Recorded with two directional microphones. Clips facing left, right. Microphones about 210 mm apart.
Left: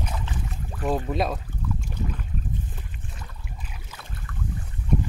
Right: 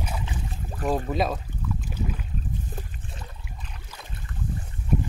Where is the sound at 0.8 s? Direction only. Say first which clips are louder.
Even; centre (ahead or behind).